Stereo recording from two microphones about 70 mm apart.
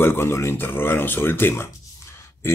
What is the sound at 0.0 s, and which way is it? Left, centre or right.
Speech, left.